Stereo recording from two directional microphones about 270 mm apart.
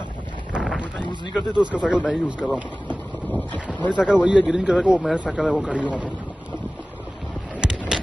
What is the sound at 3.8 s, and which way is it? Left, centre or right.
Speech, centre.